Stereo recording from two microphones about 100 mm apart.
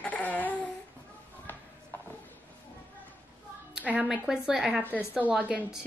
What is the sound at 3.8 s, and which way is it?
Speech, 10° right (ahead or behind).